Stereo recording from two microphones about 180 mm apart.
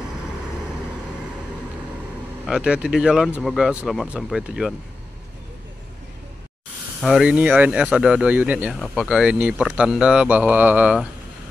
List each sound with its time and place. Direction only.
2.4 s speech: 5° right (ahead or behind)
7.0 s speech: centre (ahead or behind)